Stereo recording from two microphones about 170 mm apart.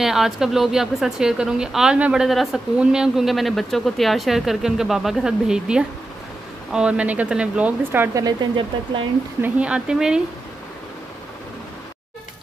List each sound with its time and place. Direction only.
0.0 s speech: centre (ahead or behind); by 9.0 s 25° right (ahead or behind)
9.4 s speech: 5° right (ahead or behind)